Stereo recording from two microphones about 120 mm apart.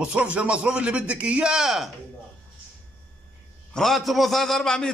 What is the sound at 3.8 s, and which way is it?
A man's voice, centre (ahead or behind).